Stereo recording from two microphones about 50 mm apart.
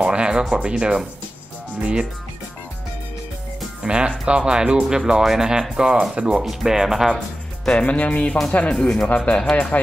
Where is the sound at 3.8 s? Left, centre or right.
Centre.